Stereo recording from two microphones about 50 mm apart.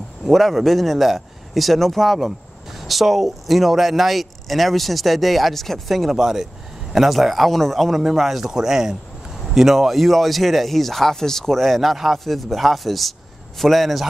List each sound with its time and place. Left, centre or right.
0.3 s speech: centre